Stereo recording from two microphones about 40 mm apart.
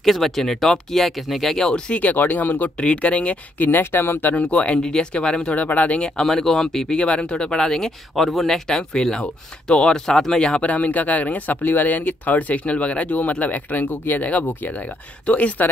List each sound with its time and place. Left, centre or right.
0.0 s speech: centre
1.9 s speech: left
2.1 s speech: left
2.8 s speech: left
3.5 s speech: left
4.3 s speech: left
4.8 s speech: left
5.5 s speech: left
6.2 s speech: centre
7.0 s speech: left; by 8.3 s centre
8.3 s speech: centre
8.6 s speech: centre
10.7 s speech: left